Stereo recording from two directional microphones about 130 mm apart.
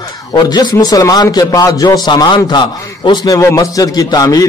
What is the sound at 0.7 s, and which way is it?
A man's voice, 25° left (ahead or behind).